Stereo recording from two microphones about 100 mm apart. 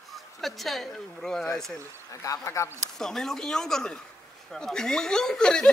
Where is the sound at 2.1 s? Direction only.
35° left (ahead or behind).